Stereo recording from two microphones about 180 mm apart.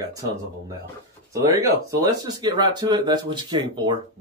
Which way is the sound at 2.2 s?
20° right (ahead or behind).